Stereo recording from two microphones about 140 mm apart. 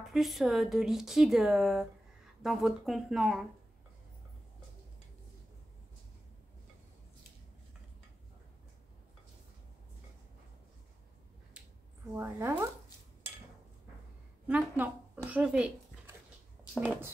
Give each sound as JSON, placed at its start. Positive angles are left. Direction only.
{"t": 0.0, "sound": "speech", "side_deg": 0}
{"t": 12.2, "sound": "speech", "side_deg": -15}
{"t": 14.5, "sound": "speech", "side_deg": -10}